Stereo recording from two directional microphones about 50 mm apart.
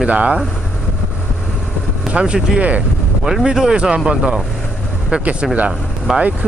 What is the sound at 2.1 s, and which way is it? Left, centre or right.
Speech, right.